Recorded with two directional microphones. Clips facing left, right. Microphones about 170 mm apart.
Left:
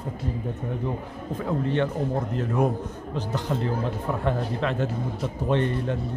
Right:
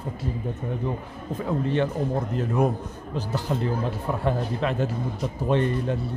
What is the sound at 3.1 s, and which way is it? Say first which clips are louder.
Speech: right 1 dB; 5° right (ahead or behind).